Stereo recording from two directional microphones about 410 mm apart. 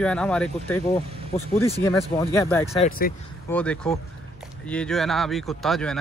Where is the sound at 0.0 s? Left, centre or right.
Centre.